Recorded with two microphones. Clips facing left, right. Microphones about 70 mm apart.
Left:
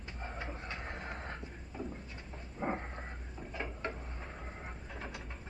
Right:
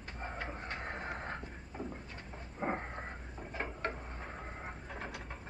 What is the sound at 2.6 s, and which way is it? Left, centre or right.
Dog, centre.